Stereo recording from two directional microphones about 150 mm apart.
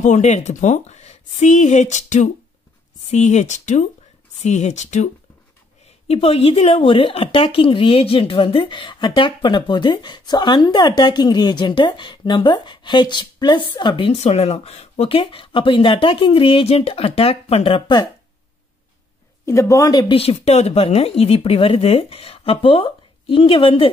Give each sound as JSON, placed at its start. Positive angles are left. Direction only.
{"t": 0.0, "sound": "speech", "side_deg": 50}
{"t": 19.4, "sound": "speech", "side_deg": 20}
{"t": 20.2, "sound": "speech", "side_deg": 40}